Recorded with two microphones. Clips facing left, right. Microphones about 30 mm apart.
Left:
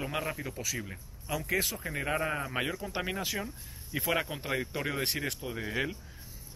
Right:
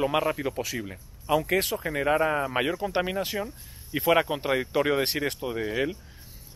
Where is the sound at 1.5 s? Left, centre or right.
Right.